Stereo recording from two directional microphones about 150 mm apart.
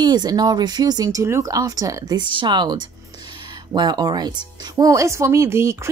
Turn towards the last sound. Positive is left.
turn(degrees=-20)  # may be behind; listen again after turning